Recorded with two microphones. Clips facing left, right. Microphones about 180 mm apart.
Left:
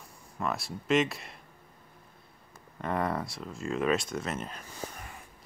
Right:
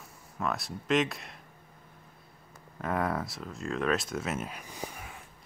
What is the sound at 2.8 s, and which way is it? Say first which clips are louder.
Speech: even; centre (ahead or behind).